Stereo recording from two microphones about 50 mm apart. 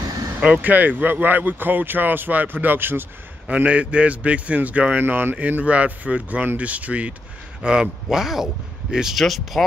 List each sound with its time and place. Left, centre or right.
0.4 s speech: right
3.4 s a man's voice: right
5.0 s a man's voice: right
7.6 s speech: centre